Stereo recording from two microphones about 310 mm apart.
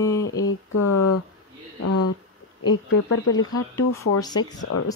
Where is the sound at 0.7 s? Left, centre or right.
Left.